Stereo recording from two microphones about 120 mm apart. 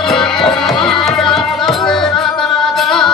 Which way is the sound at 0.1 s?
5° left (ahead or behind).